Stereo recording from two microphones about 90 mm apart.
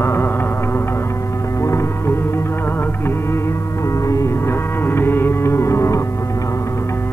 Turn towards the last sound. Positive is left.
turn(degrees=30)  # may be behind; listen again after turning